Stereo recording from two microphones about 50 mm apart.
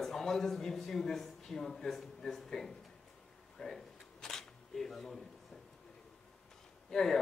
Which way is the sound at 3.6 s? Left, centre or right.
Centre.